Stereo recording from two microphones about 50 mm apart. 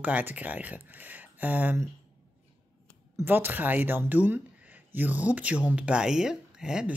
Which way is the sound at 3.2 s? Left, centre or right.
Right.